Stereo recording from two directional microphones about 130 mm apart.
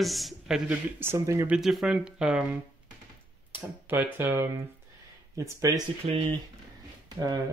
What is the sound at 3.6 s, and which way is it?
Speech, 15° right (ahead or behind).